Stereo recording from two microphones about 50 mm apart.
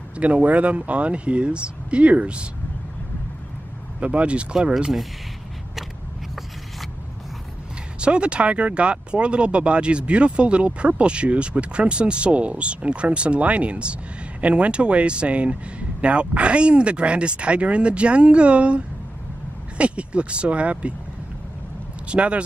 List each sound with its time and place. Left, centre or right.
0.2 s speech: right
4.0 s speech: right
8.0 s speech: right
19.8 s speech: right
22.0 s speech: right